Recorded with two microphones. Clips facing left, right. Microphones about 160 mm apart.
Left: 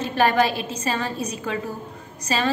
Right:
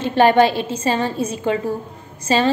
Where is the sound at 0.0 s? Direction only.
25° right (ahead or behind).